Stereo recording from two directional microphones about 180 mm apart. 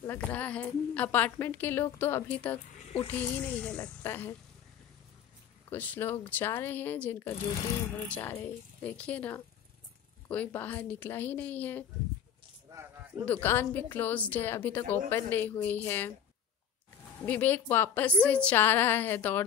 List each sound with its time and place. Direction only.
0.0 s a woman's voice: 10° left (ahead or behind)
5.7 s a woman's voice: 10° left (ahead or behind)
13.2 s a woman's voice: 10° left (ahead or behind)
17.3 s a woman's voice: 10° left (ahead or behind)